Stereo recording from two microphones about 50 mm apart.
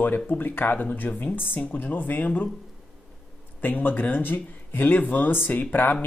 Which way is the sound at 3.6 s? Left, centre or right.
Left.